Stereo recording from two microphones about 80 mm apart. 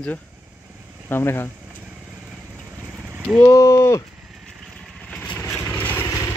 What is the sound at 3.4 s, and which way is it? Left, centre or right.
Speech, left.